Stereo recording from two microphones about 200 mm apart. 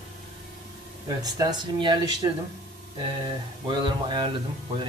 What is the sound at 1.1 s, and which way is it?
Speech, 20° right (ahead or behind).